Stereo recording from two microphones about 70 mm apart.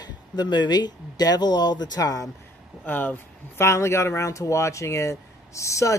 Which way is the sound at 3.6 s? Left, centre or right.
Left.